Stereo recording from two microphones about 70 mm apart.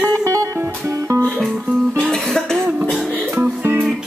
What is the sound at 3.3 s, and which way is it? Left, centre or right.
Music, right.